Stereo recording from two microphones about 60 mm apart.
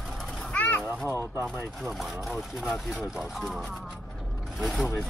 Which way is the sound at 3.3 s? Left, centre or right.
Centre.